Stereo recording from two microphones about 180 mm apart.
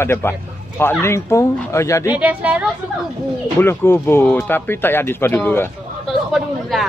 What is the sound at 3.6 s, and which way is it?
Speech, 15° left (ahead or behind).